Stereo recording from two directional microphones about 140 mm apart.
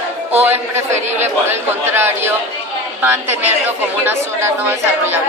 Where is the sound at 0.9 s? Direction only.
55° right (ahead or behind).